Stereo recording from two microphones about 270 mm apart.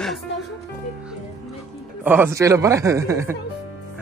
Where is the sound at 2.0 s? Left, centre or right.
Centre.